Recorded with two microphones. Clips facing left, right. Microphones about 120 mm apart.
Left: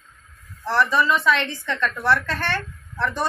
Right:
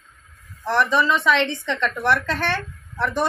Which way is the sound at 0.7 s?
20° right (ahead or behind).